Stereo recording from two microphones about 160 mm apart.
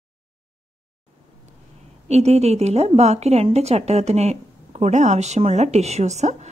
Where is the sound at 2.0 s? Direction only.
40° right (ahead or behind).